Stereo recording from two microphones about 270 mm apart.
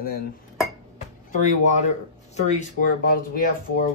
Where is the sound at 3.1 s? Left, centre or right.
Left.